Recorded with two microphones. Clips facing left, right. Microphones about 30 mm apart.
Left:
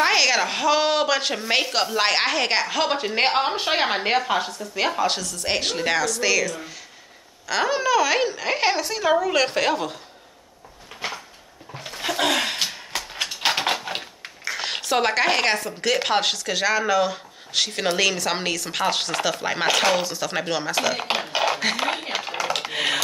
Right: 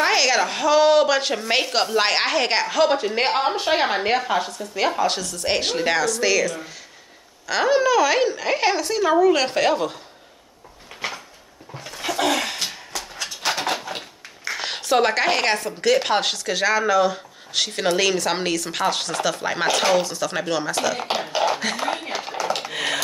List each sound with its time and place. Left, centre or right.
0.0 s a woman's voice: centre
11.8 s dog: left
12.1 s a sound: centre
12.9 s a sound: left
14.4 s a woman's voice: centre
19.7 s speech: left
20.0 s a woman's voice: centre
20.7 s speech: left
21.8 s speech: left
22.7 s computer keyboard: centre